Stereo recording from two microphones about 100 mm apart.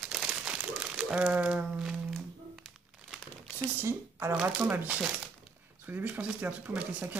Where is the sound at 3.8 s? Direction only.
25° right (ahead or behind).